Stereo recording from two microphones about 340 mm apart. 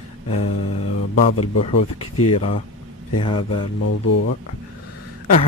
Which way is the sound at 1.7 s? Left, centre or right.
Left.